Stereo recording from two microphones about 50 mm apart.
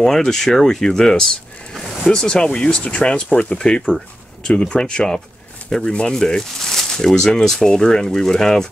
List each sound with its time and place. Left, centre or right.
0.0 s speech: centre